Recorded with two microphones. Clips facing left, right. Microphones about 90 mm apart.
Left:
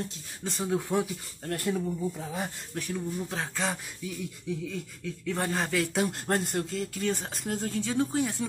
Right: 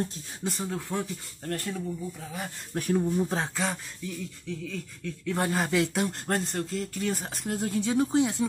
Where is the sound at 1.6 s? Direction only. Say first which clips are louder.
Left 4 dB; 20° left (ahead or behind).